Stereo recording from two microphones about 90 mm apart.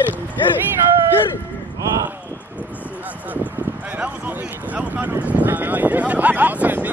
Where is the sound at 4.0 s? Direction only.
20° right (ahead or behind).